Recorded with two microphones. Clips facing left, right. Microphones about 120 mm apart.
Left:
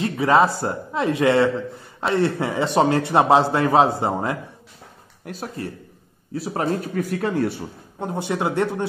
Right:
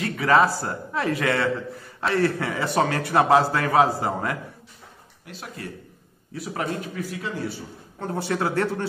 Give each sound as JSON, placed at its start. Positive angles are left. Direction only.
{"t": 0.0, "sound": "a man's voice", "side_deg": 20}
{"t": 5.2, "sound": "speech", "side_deg": 40}
{"t": 7.0, "sound": "speech", "side_deg": 55}
{"t": 8.0, "sound": "speech", "side_deg": 20}